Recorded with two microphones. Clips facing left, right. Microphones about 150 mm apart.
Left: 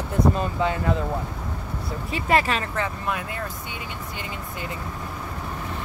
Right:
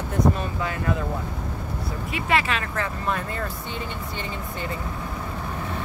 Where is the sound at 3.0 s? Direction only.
10° left (ahead or behind).